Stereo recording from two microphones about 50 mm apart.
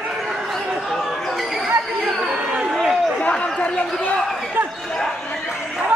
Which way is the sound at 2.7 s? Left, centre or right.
Centre.